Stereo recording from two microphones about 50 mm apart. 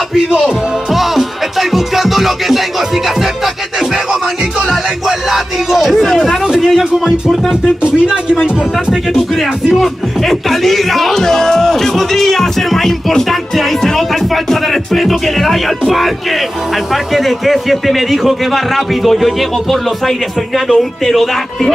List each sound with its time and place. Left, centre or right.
0.9 s music: centre
4.1 s music: centre
6.4 s speech: centre
7.6 s speech: centre
9.8 s speech: centre
16.9 s speech: centre